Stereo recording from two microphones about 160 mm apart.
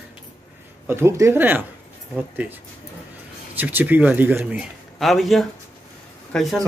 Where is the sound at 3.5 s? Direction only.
10° right (ahead or behind).